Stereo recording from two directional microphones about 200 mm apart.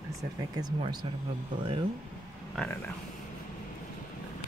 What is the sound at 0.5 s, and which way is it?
Speech, 20° right (ahead or behind).